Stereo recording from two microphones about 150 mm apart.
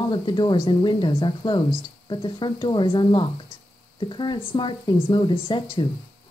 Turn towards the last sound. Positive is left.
turn(degrees=35)  # may be behind; listen again after turning